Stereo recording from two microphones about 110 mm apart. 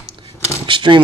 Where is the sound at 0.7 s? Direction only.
50° right (ahead or behind).